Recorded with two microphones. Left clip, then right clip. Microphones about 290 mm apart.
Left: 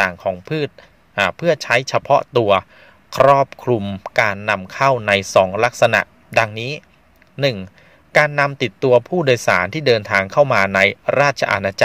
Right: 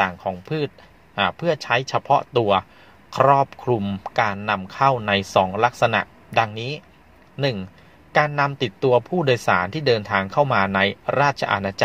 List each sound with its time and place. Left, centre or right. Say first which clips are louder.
0.0 s a man's voice: left 4 dB; left